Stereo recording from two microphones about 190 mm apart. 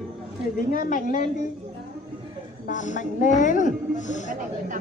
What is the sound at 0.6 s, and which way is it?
Speech, 45° left (ahead or behind).